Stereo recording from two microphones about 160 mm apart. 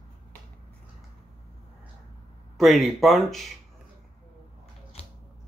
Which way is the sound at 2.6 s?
Centre (ahead or behind).